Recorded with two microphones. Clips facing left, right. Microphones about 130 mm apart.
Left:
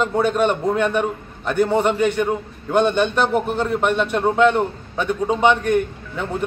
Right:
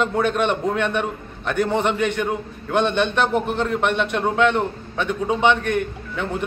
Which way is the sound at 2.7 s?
5° left (ahead or behind).